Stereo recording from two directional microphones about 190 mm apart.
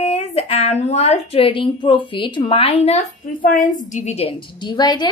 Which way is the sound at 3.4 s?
45° left (ahead or behind).